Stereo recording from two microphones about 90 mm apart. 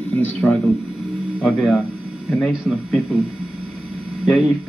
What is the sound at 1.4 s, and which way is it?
Speech, centre (ahead or behind).